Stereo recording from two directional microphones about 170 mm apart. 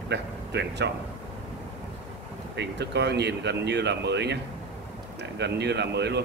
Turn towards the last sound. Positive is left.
turn(degrees=-80)